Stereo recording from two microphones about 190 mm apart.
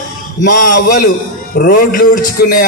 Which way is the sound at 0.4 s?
50° left (ahead or behind).